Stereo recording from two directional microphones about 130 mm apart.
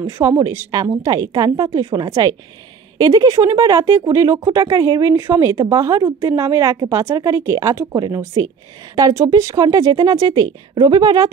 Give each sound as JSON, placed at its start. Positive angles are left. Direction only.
{"t": 0.0, "sound": "speech", "side_deg": -20}